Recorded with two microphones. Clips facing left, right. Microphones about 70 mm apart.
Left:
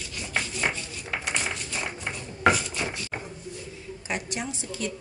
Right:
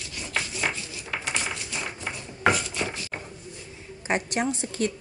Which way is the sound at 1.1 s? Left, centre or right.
Centre.